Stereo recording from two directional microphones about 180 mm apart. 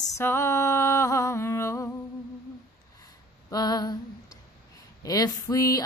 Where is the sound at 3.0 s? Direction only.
20° left (ahead or behind).